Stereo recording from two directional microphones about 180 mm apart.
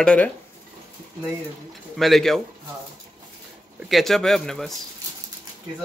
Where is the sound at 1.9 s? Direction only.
Centre (ahead or behind).